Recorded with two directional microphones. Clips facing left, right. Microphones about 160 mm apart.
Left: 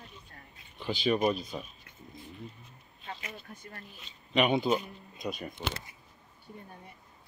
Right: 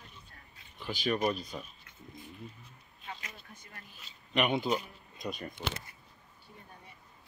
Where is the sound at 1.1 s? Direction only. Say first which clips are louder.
Left 3 dB; 15° left (ahead or behind).